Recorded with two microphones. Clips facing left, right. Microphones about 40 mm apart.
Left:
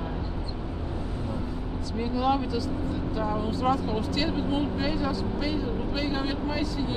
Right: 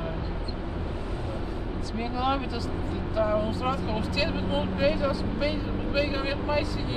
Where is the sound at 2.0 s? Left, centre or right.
Centre.